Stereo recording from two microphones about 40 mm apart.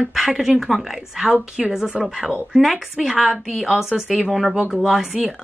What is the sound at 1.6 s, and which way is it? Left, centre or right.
Speech, right.